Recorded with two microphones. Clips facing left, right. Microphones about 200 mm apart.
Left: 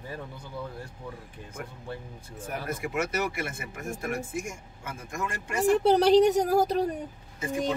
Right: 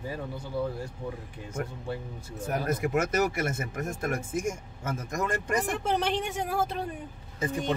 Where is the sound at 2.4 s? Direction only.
40° right (ahead or behind).